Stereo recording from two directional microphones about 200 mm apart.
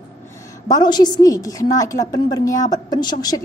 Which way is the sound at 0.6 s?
20° left (ahead or behind).